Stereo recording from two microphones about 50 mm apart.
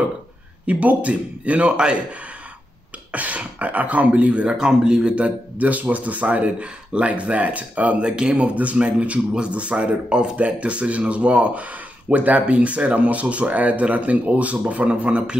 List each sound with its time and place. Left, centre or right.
0.7 s speech: right
3.1 s speech: right